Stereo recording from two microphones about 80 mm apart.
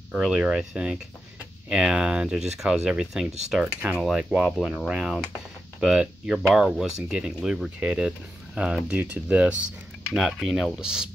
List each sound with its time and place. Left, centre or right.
0.1 s speech: centre
3.6 s speech: centre
4.1 s speech: centre
10.1 s speech: centre